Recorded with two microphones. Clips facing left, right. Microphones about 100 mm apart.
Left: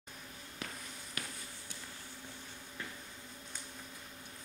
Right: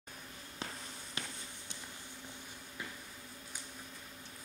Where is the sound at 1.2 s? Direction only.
25° right (ahead or behind).